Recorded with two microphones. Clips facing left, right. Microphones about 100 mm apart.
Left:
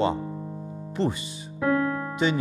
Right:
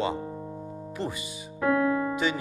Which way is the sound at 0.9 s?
30° left (ahead or behind).